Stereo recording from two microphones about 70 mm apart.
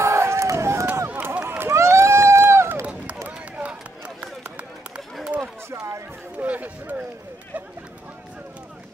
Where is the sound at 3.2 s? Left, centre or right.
Centre.